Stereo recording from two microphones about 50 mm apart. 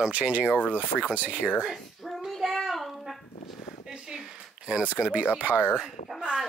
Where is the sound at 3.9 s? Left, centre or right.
Centre.